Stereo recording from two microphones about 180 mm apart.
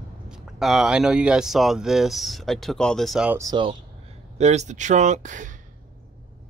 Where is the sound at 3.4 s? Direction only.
25° right (ahead or behind).